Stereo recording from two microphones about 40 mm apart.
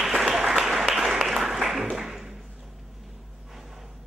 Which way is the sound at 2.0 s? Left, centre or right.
Centre.